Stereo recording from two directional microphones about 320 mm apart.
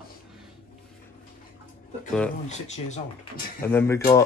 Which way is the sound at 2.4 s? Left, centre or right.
Left.